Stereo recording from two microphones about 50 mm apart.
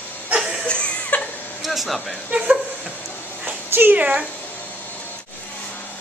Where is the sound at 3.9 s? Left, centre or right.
Right.